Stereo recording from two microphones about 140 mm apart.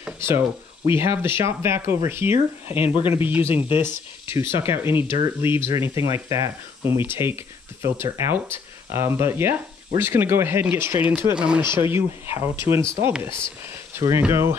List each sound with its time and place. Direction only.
0.8 s speech: 15° right (ahead or behind)